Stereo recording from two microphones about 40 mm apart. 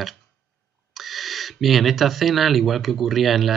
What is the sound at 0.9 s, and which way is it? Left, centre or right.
Speech, centre.